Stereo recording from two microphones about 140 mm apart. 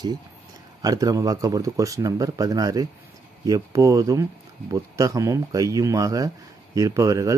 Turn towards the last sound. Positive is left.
turn(degrees=-25)  # may be behind; listen again after turning